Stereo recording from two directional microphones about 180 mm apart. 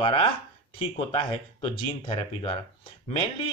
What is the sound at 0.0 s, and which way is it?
Speech, 30° left (ahead or behind).